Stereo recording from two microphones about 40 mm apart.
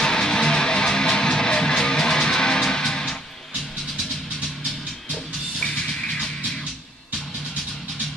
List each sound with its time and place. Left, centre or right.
0.0 s music: centre
5.1 s music: left